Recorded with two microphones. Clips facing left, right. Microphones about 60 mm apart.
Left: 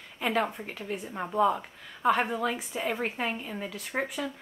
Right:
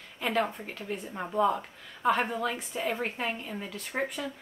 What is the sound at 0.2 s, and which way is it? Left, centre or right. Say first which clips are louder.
A woman's voice: left 1 dB; centre.